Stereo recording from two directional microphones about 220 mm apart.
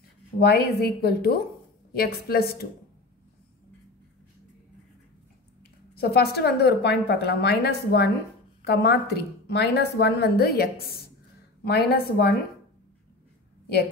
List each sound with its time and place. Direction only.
0.4 s a woman's voice: 45° left (ahead or behind)
5.9 s a woman's voice: 45° left (ahead or behind)